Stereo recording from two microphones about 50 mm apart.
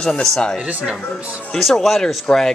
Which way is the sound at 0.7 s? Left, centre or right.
Right.